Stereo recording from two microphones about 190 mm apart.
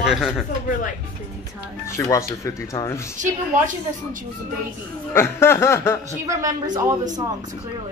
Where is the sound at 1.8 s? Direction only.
15° left (ahead or behind).